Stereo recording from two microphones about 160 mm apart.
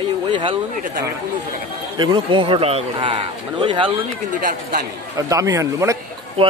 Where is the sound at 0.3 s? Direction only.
30° right (ahead or behind).